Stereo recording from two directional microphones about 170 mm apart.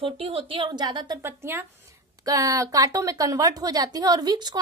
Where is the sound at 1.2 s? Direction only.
15° right (ahead or behind).